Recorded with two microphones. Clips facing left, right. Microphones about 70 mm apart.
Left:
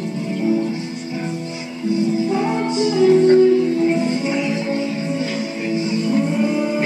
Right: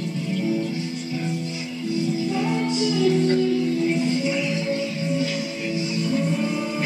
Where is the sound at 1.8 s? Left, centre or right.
Left.